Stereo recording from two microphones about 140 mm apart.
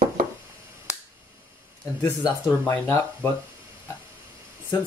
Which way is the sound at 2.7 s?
20° left (ahead or behind).